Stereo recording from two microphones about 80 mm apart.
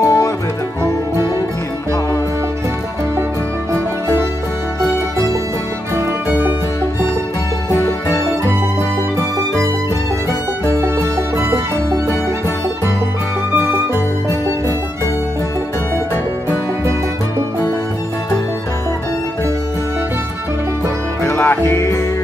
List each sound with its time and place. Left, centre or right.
0.0 s music: left
7.7 s music: left
21.3 s music: left